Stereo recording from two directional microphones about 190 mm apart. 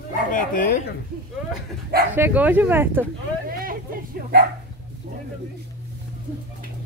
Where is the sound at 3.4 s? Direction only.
50° right (ahead or behind).